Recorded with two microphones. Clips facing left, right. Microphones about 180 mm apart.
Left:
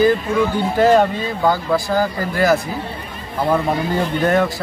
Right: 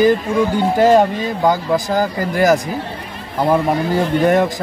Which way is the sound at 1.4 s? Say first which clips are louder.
Right 1 dB; 20° right (ahead or behind).